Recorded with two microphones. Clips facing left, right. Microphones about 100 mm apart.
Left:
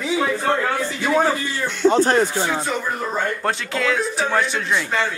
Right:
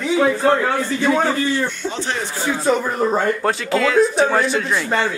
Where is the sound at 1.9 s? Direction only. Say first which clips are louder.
Left 8 dB; 45° left (ahead or behind).